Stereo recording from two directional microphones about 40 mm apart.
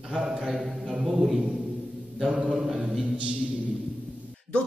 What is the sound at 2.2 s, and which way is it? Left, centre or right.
Mantra, centre.